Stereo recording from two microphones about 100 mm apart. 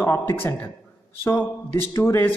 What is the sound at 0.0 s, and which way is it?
Speech, 25° left (ahead or behind).